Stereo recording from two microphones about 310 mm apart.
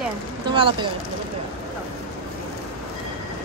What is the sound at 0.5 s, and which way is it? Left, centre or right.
Speech, centre.